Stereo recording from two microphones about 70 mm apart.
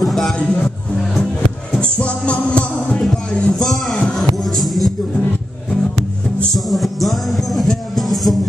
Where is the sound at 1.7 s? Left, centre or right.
Centre.